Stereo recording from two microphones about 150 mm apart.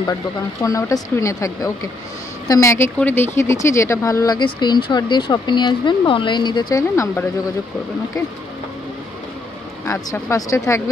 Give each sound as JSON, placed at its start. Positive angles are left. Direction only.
{"t": 0.6, "sound": "a woman's voice", "side_deg": 20}
{"t": 10.1, "sound": "speech", "side_deg": 20}